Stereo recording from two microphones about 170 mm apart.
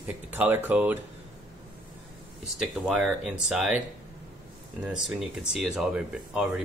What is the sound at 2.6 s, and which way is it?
Speech, centre (ahead or behind).